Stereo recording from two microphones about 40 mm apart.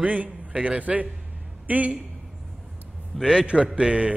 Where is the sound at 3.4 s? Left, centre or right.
Right.